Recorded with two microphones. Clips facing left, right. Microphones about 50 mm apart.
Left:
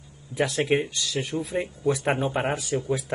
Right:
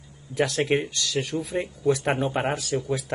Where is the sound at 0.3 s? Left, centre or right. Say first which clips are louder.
Right 1 dB; right.